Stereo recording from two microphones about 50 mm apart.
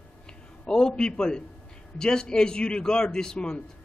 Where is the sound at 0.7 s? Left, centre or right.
Centre.